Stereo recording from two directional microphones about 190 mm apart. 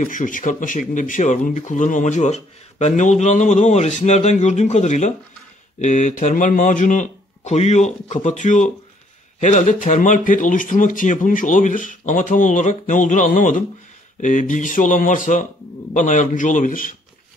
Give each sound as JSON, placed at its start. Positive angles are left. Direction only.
{"t": 0.0, "sound": "speech", "side_deg": 45}